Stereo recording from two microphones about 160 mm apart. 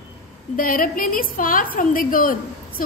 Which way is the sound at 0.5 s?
60° left (ahead or behind).